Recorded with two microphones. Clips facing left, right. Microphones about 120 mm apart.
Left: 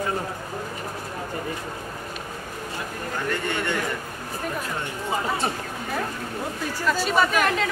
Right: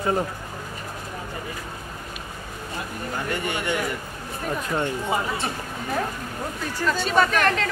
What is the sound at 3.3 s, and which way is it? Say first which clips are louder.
Speech: even; 15° right (ahead or behind).